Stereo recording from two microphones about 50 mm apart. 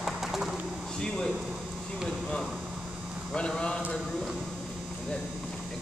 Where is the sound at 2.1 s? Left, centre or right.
Centre.